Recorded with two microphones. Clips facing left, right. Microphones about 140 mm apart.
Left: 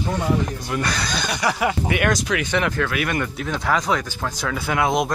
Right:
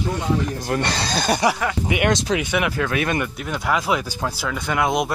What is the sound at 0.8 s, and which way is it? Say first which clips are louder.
Speech: right 2 dB; 30° right (ahead or behind).